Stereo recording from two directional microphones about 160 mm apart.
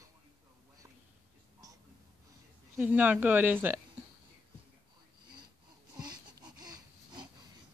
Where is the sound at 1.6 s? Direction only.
20° right (ahead or behind).